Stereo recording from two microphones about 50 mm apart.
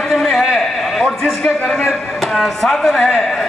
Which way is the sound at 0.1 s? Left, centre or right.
Centre.